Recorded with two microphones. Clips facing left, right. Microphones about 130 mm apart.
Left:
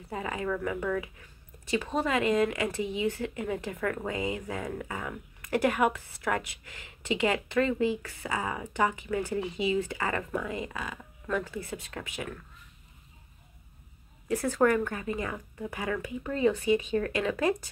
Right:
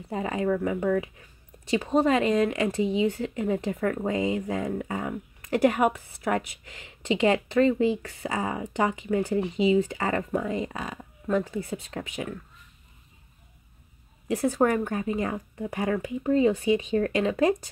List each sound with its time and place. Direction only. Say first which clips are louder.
0.1 s speech: right 6 dB; 30° right (ahead or behind)
14.2 s speech: right 2 dB; 15° right (ahead or behind)